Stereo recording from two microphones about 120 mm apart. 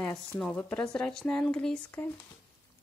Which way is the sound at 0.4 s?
10° left (ahead or behind).